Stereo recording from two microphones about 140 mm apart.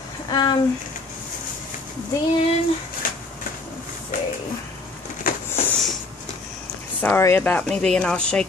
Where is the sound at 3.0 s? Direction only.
90° left.